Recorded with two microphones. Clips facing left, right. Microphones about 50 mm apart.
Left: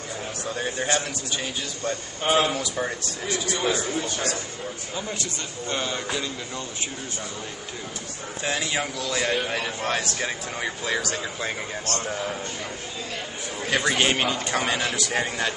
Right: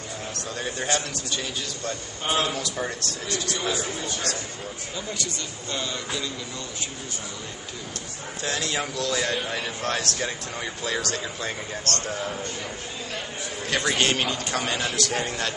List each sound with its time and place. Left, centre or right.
0.6 s speech: centre
0.8 s a man's voice: centre
4.9 s a man's voice: left
8.5 s speech: centre
13.7 s speech: centre